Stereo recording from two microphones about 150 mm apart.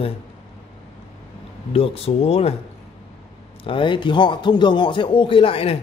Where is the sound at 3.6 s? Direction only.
35° left (ahead or behind).